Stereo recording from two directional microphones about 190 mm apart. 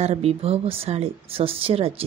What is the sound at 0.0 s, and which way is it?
Speech, 35° right (ahead or behind).